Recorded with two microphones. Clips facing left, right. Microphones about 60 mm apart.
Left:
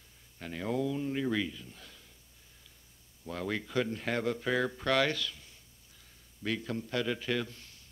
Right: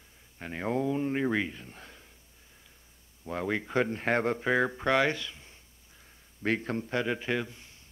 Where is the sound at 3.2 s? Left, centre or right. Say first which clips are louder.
Right 4 dB; right.